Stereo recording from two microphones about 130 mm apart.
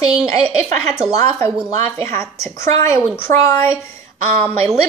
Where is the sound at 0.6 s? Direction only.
5° right (ahead or behind).